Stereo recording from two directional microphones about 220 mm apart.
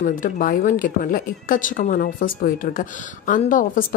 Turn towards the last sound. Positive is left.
turn(degrees=35)  # may be behind; listen again after turning